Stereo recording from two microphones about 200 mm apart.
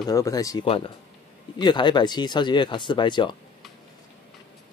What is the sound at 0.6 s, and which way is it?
Speech, 30° left (ahead or behind).